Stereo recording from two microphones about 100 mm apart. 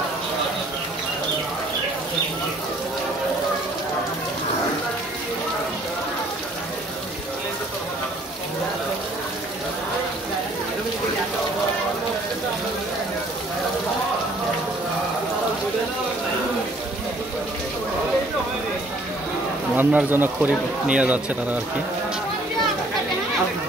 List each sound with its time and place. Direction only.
19.7 s speech: 15° right (ahead or behind)